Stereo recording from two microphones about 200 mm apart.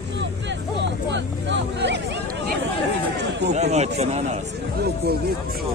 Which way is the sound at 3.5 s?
35° right (ahead or behind).